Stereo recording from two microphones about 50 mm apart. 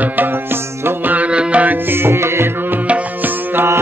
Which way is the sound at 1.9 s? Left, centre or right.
Right.